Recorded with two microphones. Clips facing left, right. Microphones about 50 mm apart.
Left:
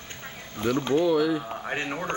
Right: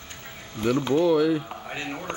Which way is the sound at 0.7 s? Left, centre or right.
Centre.